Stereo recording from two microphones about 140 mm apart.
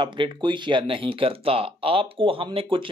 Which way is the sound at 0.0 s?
35° right (ahead or behind).